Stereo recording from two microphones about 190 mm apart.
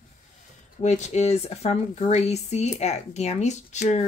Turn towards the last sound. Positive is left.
turn(degrees=35)  # may be behind; listen again after turning